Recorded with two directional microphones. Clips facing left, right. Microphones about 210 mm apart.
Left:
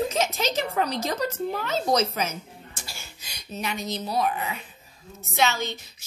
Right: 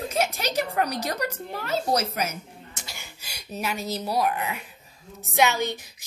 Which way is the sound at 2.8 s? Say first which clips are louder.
Even; 20° right (ahead or behind).